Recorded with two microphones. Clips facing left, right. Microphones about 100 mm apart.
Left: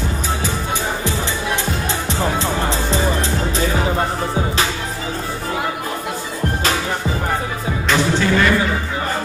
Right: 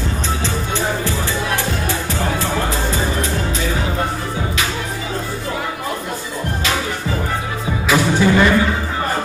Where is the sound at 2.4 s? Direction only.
25° left (ahead or behind).